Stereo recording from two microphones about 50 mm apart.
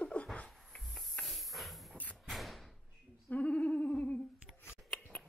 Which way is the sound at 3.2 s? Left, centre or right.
Left.